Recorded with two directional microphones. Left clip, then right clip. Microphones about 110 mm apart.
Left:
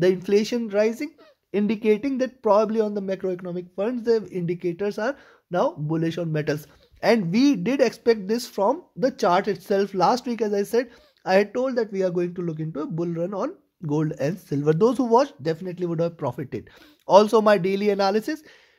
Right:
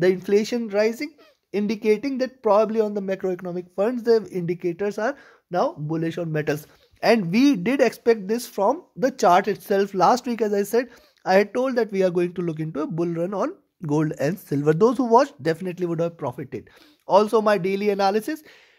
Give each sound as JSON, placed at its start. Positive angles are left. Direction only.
{"t": 0.0, "sound": "speech", "side_deg": -5}
{"t": 5.5, "sound": "speech", "side_deg": 0}
{"t": 6.3, "sound": "speech", "side_deg": -15}
{"t": 8.3, "sound": "speech", "side_deg": -5}
{"t": 9.0, "sound": "speech", "side_deg": -25}
{"t": 11.5, "sound": "speech", "side_deg": -40}
{"t": 14.9, "sound": "speech", "side_deg": -20}
{"t": 15.2, "sound": "speech", "side_deg": -40}
{"t": 15.7, "sound": "speech", "side_deg": -25}
{"t": 16.2, "sound": "speech", "side_deg": 10}